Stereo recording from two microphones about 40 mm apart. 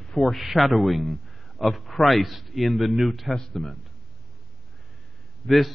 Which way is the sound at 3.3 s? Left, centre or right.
Centre.